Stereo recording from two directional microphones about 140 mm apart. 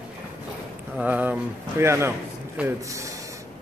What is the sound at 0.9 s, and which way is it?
Speech, 10° right (ahead or behind).